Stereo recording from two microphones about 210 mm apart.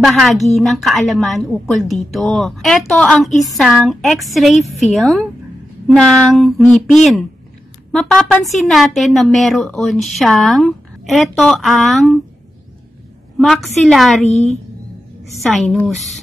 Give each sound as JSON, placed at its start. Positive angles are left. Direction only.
{"t": 0.0, "sound": "a woman's voice", "side_deg": 0}
{"t": 13.4, "sound": "a woman's voice", "side_deg": 0}
{"t": 14.3, "sound": "a woman's voice", "side_deg": 30}
{"t": 15.4, "sound": "a woman's voice", "side_deg": 0}